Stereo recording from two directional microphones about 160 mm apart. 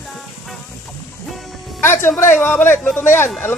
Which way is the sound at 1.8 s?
15° left (ahead or behind).